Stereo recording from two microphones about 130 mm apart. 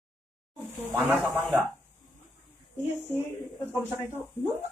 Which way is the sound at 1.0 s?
Centre (ahead or behind).